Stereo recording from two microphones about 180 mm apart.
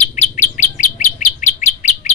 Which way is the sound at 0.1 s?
40° left (ahead or behind).